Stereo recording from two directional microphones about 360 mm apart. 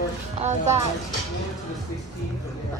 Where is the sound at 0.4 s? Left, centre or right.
Centre.